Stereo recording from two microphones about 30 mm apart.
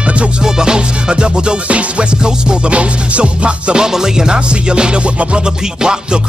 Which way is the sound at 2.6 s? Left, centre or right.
Right.